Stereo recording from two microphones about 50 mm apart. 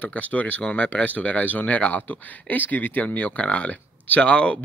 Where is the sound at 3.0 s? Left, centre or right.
Left.